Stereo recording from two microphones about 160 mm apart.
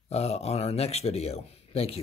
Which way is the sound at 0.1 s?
40° left (ahead or behind).